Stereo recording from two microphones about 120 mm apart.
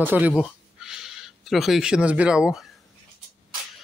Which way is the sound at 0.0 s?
15° right (ahead or behind).